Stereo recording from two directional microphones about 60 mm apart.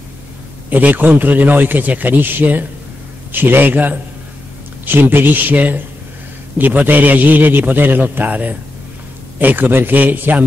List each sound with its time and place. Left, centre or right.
0.7 s a man's voice: right